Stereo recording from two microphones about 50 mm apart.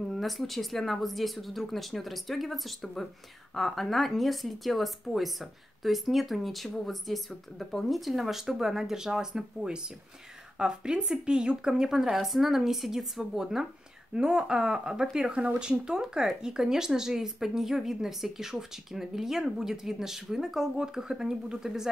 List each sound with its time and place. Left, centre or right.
0.0 s a woman's voice: centre